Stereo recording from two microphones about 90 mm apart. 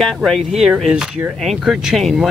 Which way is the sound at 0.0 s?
5° left (ahead or behind).